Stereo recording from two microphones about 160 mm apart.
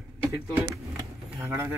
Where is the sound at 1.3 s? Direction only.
15° right (ahead or behind).